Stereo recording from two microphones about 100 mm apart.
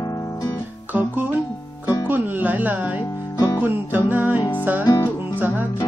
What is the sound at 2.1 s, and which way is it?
Music, 15° right (ahead or behind).